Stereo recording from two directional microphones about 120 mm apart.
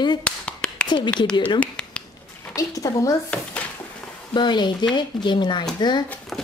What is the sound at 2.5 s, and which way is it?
Speech, 30° left (ahead or behind).